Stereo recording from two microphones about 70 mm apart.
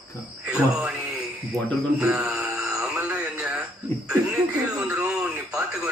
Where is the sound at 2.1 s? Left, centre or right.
Right.